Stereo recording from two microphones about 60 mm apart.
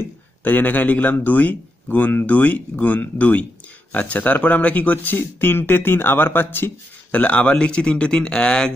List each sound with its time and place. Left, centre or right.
0.4 s a man's voice: left
7.1 s speech: left